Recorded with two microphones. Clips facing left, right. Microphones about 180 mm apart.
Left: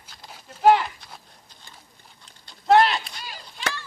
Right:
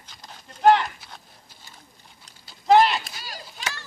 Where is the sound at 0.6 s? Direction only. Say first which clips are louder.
Even; 5° left (ahead or behind).